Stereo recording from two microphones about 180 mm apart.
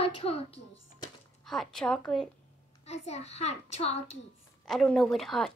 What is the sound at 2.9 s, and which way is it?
Child singing, 40° left (ahead or behind).